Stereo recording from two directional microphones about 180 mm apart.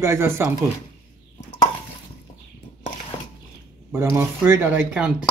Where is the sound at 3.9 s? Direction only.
15° right (ahead or behind).